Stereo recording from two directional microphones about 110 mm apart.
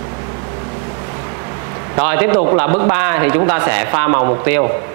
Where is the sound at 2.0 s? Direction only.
20° right (ahead or behind).